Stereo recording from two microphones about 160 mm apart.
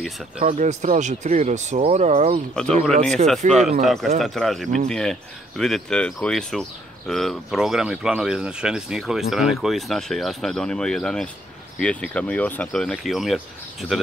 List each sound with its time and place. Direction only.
0.4 s speech: 50° right (ahead or behind)
2.5 s speech: 5° left (ahead or behind)